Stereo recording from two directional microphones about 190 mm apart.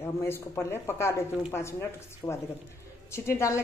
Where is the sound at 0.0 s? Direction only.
15° left (ahead or behind).